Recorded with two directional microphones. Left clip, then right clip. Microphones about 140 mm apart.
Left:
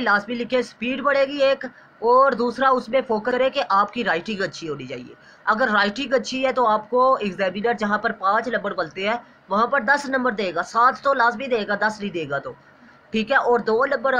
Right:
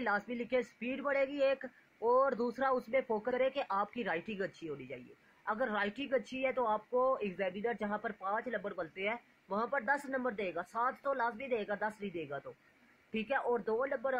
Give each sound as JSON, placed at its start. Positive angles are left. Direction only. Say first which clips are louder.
{"t": 0.3, "sound": "speech", "louder": "left 12 dB", "side_deg": -40}